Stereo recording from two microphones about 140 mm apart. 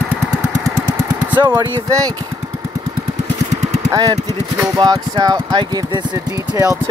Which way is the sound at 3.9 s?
30° right (ahead or behind).